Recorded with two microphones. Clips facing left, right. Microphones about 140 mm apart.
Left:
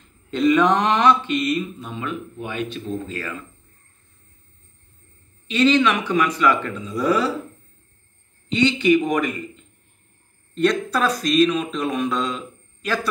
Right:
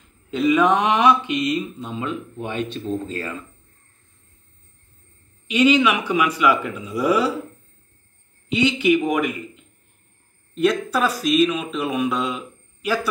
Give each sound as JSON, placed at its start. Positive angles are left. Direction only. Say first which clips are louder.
{"t": 0.3, "sound": "speech", "louder": "even", "side_deg": -5}
{"t": 5.5, "sound": "a man's voice", "louder": "right 1 dB", "side_deg": -10}
{"t": 8.5, "sound": "a man's voice", "louder": "left 1 dB", "side_deg": -5}